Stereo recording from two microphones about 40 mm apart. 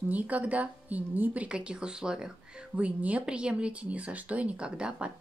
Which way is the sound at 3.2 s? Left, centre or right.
Right.